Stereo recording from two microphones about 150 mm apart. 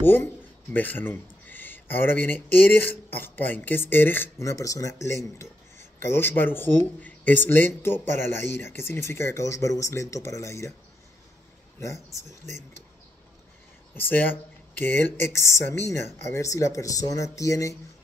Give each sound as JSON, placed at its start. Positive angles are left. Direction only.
{"t": 0.0, "sound": "speech", "side_deg": 15}
{"t": 11.8, "sound": "speech", "side_deg": 20}
{"t": 13.9, "sound": "speech", "side_deg": 15}